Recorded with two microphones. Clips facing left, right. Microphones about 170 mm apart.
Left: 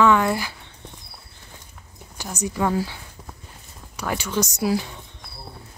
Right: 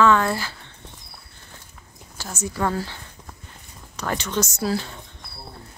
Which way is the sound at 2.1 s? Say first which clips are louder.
Left 2 dB; 15° left (ahead or behind).